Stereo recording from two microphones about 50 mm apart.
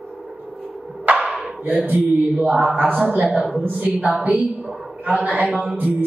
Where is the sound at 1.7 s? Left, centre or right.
Right.